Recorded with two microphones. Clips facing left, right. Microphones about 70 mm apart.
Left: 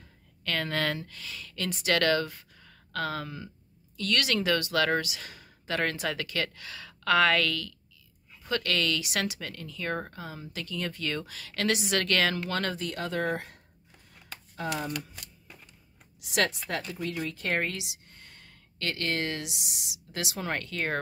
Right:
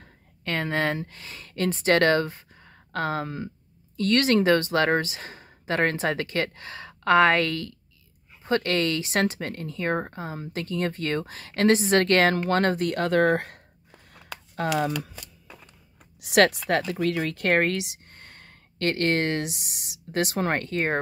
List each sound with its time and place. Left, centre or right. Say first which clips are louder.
0.4 s speech: right 4 dB; right
16.0 s speech: right 9 dB; right